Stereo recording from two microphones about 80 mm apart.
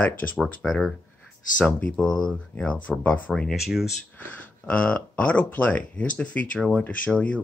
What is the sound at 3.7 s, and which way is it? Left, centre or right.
Speech, centre.